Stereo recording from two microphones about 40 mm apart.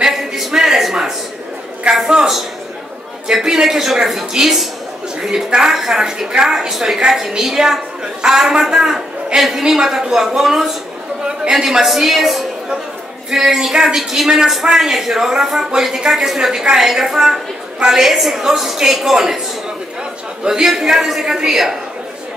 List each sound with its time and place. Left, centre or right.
0.0 s a sound: centre
1.9 s a man's voice: right
3.4 s a woman's voice: centre
20.4 s a woman's voice: centre